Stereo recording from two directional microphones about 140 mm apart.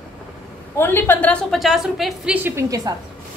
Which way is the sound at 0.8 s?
15° left (ahead or behind).